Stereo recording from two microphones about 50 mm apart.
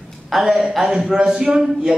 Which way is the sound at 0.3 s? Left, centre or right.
Centre.